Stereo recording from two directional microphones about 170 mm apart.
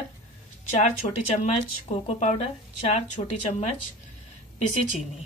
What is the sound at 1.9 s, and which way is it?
Speech, 40° left (ahead or behind).